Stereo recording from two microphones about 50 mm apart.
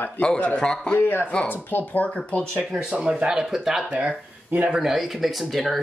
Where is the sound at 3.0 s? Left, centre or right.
Centre.